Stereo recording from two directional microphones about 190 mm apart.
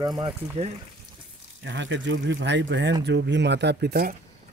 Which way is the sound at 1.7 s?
75° right (ahead or behind).